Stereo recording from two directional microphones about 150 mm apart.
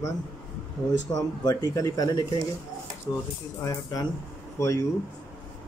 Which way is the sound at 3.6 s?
20° left (ahead or behind).